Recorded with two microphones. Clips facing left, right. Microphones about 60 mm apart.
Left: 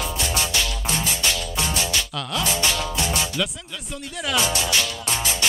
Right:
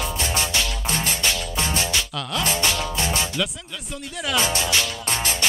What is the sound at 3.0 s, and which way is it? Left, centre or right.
Music, right.